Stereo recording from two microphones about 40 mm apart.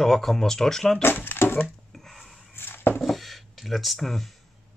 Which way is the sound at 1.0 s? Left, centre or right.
Left.